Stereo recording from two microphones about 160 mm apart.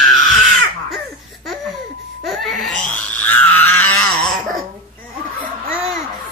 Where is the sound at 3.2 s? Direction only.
10° left (ahead or behind).